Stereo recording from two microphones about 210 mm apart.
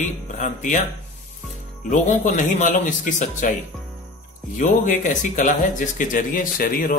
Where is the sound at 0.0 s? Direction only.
35° left (ahead or behind).